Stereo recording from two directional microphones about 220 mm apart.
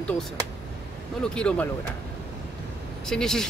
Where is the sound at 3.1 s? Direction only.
Centre (ahead or behind).